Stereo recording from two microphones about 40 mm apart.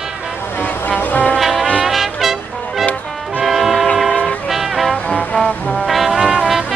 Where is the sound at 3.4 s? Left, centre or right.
Centre.